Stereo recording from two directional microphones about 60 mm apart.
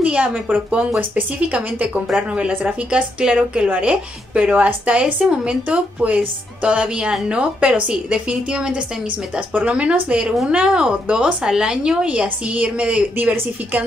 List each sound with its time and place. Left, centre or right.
0.0 s a woman's voice: centre
2.1 s a woman's voice: right